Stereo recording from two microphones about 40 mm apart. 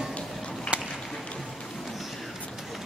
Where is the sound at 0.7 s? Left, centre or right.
Right.